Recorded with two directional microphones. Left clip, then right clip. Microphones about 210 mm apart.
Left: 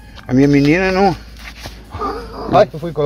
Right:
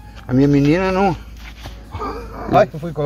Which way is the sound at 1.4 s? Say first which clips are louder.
Left 5 dB; 45° left (ahead or behind).